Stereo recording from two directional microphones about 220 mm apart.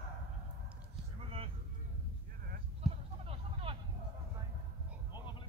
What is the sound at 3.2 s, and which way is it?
Vehicle, 25° right (ahead or behind).